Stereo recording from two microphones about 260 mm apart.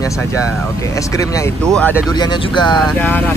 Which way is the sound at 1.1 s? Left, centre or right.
Centre.